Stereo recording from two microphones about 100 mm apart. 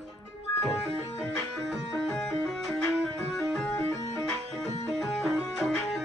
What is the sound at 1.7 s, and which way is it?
Music, centre (ahead or behind).